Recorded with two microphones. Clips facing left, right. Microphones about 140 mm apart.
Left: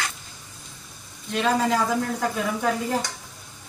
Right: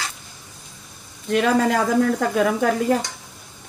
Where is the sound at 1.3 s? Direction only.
60° right (ahead or behind).